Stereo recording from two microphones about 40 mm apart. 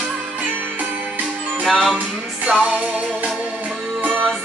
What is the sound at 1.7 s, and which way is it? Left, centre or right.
Music, centre.